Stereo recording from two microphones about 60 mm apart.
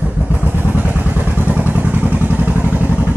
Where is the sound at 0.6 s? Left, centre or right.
Right.